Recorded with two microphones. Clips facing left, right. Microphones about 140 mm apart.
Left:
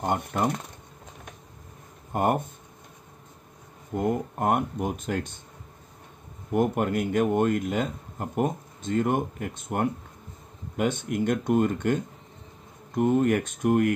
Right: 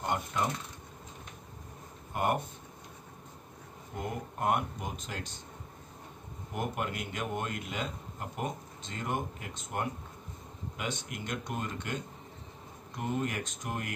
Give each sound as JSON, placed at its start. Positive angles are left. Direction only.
{"t": 0.0, "sound": "a man's voice", "side_deg": 50}
{"t": 2.1, "sound": "a man's voice", "side_deg": 45}
{"t": 3.9, "sound": "a man's voice", "side_deg": 50}
{"t": 6.5, "sound": "a man's voice", "side_deg": 50}